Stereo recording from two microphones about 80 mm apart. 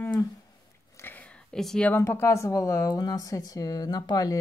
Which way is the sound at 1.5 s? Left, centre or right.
Centre.